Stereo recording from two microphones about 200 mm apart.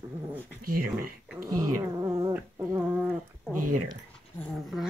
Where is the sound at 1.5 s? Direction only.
15° right (ahead or behind).